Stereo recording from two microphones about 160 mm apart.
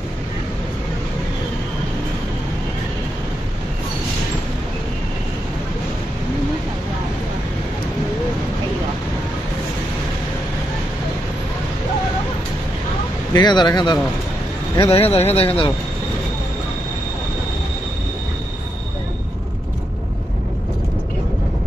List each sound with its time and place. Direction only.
13.3 s speech: 25° left (ahead or behind)
14.8 s speech: 35° left (ahead or behind)